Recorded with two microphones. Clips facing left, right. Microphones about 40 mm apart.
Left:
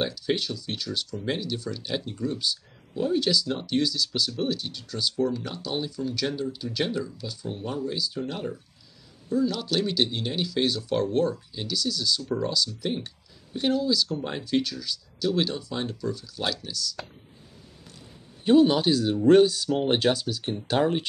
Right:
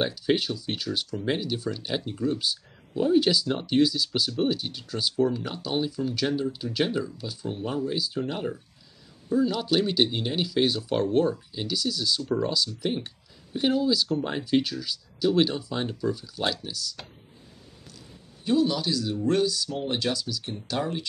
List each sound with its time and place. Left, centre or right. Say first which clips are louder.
0.0 s speech: right 2 dB; centre
18.4 s speech: left 5 dB; left